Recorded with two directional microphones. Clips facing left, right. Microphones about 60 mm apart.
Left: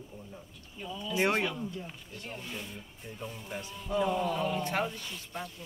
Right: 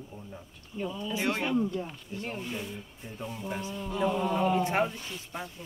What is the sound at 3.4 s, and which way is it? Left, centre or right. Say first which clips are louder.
Speech: right 5 dB; centre.